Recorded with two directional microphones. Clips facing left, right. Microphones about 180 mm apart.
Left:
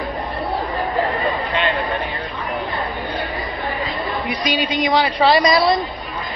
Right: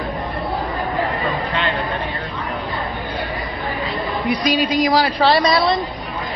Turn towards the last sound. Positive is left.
turn(degrees=0)  # may be behind; listen again after turning